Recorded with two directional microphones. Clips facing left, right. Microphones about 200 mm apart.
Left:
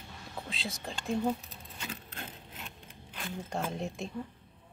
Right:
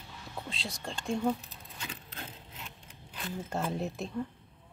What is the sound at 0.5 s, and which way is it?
Speech, centre (ahead or behind).